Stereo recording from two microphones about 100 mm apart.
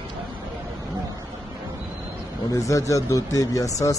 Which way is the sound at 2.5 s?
35° left (ahead or behind).